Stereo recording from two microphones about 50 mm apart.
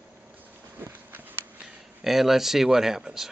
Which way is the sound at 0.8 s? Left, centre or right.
Right.